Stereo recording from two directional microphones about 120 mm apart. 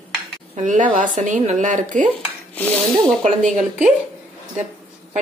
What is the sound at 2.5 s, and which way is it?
Speech, 10° left (ahead or behind).